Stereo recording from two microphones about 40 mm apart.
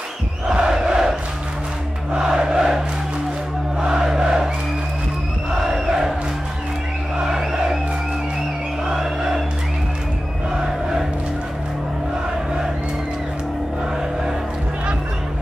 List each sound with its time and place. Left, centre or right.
0.5 s crowd: centre
2.1 s a sound: centre
3.8 s crowd: centre
5.7 s crowd: centre
7.2 s music: centre
8.8 s a sound: centre